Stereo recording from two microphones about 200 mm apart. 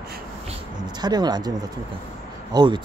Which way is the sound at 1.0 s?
20° right (ahead or behind).